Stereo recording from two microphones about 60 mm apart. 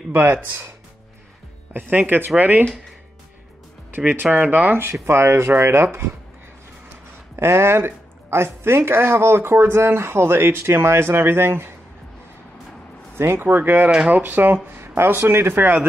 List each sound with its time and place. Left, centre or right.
0.1 s speech: right
1.7 s speech: right
3.9 s speech: right
5.0 s speech: right
7.3 s speech: right
13.1 s speech: right